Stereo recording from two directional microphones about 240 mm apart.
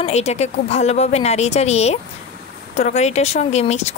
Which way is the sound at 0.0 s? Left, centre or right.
Left.